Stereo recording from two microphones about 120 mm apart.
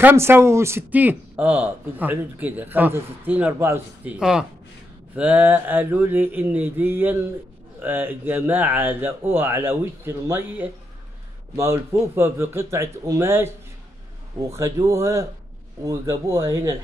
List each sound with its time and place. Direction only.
0.0 s speech: 20° right (ahead or behind)